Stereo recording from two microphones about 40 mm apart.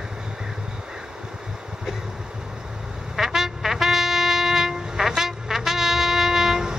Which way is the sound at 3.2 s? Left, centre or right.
Centre.